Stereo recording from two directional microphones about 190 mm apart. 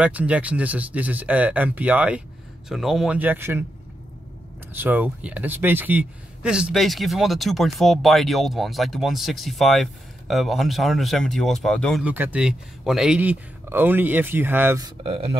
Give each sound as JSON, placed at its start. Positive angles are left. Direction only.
{"t": 0.0, "sound": "speech", "side_deg": -5}
{"t": 4.7, "sound": "speech", "side_deg": -10}
{"t": 12.0, "sound": "speech", "side_deg": -10}
{"t": 15.0, "sound": "speech", "side_deg": -30}